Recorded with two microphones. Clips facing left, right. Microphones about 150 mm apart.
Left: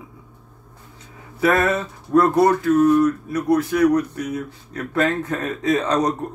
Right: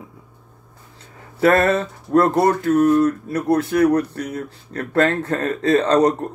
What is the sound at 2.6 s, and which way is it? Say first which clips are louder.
Speech: even; 55° right (ahead or behind).